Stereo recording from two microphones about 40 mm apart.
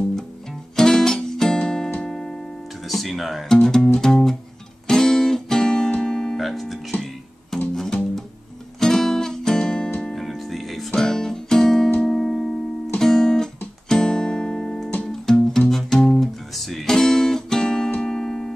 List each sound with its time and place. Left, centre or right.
0.7 s music: centre
2.9 s speech: centre
3.6 s music: centre
4.8 s guitar: centre
5.9 s music: centre
6.3 s music: centre
7.5 s music: centre
10.1 s music: centre
11.0 s music: centre
13.0 s guitar: centre
13.8 s music: centre
15.7 s guitar: centre
18.0 s music: centre